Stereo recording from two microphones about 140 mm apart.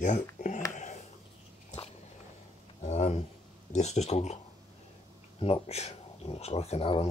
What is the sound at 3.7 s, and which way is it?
Speech, 55° left (ahead or behind).